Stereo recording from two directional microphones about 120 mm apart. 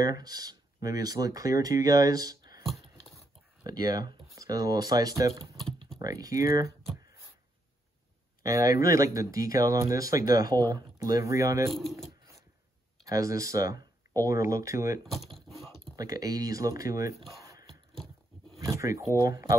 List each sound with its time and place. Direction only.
0.0 s speech: 35° right (ahead or behind)
2.6 s a sound: centre (ahead or behind)
3.6 s speech: 30° right (ahead or behind)
8.4 s speech: 30° right (ahead or behind)
11.8 s speech: centre (ahead or behind)
13.0 s speech: 30° right (ahead or behind)
15.3 s a sound: centre (ahead or behind)
16.0 s speech: 30° right (ahead or behind)
17.3 s a sound: 25° right (ahead or behind)
18.6 s speech: 30° right (ahead or behind)